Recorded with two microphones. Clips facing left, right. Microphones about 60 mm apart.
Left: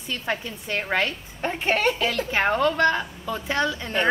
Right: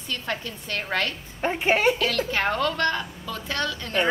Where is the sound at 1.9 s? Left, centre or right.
Centre.